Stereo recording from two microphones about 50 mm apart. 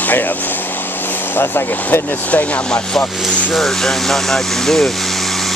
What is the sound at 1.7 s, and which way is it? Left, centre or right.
Speech, left.